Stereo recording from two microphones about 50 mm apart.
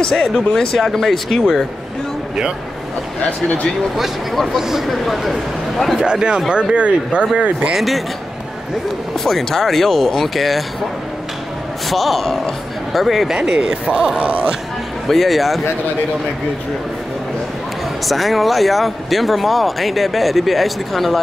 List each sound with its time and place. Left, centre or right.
0.0 s speech: centre
3.9 s speech: centre
5.9 s speech: centre
7.7 s speech: centre
9.1 s speech: centre
11.9 s speech: centre
13.5 s speech: centre
15.0 s speech: centre
18.0 s speech: centre